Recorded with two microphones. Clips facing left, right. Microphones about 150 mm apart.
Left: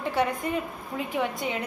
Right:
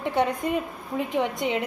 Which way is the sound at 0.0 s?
20° right (ahead or behind).